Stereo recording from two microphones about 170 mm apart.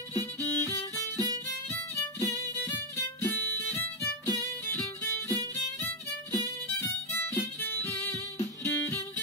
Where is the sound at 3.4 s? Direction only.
10° left (ahead or behind).